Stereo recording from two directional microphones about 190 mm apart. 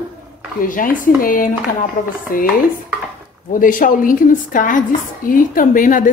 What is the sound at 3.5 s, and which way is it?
A woman's voice, 45° left (ahead or behind).